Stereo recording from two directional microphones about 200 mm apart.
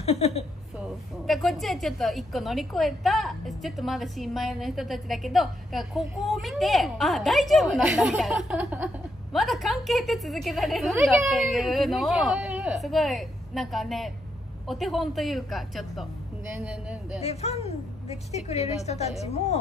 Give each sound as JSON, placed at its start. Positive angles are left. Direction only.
{"t": 0.0, "sound": "a woman's voice", "side_deg": 30}
{"t": 0.7, "sound": "a woman's voice", "side_deg": 0}
{"t": 17.2, "sound": "a woman's voice", "side_deg": 30}